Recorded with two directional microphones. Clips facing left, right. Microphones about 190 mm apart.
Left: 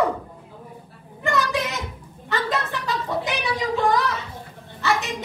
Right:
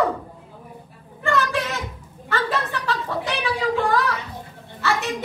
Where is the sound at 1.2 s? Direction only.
15° left (ahead or behind).